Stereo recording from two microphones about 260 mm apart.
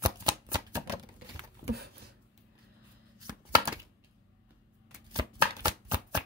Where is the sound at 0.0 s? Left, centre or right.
Centre.